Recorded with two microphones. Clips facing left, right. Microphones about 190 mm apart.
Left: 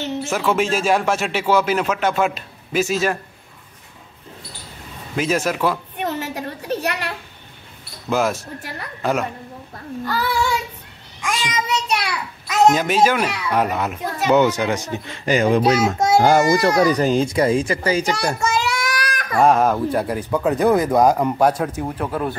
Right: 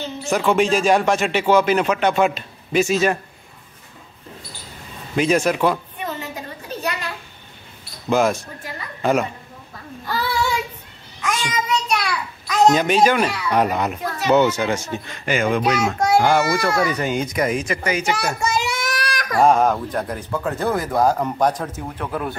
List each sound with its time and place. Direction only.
0.3 s speech: 5° left (ahead or behind)
5.1 s speech: centre (ahead or behind)
5.9 s a sound: 70° left (ahead or behind)
8.1 s speech: 5° left (ahead or behind)
10.0 s child singing: 10° right (ahead or behind)
11.7 s a sound: 20° left (ahead or behind)
12.7 s speech: 5° left (ahead or behind)
14.3 s speech: 15° left (ahead or behind)
15.2 s a child's voice: 35° left (ahead or behind)
18.1 s child singing: 10° right (ahead or behind)
19.4 s speech: centre (ahead or behind)